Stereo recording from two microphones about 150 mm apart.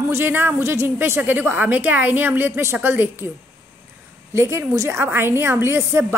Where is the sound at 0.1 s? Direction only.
15° right (ahead or behind).